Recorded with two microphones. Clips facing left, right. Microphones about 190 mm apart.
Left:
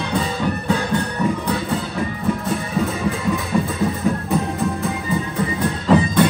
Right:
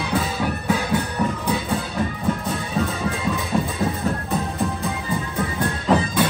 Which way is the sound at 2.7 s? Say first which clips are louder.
Left 1 dB; centre (ahead or behind).